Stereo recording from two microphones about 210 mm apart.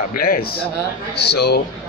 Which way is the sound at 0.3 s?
45° left (ahead or behind).